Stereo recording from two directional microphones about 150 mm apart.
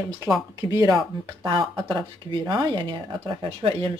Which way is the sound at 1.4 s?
30° right (ahead or behind).